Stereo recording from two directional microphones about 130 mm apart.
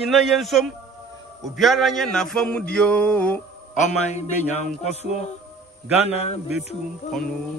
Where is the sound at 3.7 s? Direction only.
65° left (ahead or behind).